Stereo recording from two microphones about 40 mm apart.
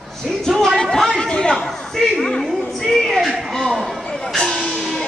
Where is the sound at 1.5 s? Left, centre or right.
Centre.